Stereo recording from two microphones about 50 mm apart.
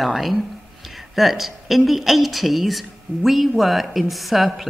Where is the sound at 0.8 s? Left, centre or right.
Centre.